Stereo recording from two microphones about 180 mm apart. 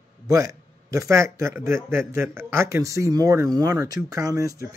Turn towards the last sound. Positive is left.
turn(degrees=-20)  # may be behind; listen again after turning